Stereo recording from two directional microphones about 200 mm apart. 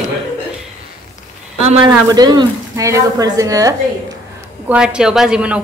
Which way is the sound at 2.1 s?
20° right (ahead or behind).